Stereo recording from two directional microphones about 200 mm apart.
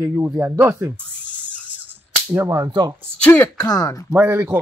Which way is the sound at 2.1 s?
10° right (ahead or behind).